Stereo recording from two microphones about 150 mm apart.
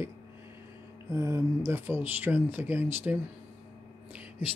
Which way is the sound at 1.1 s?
20° right (ahead or behind).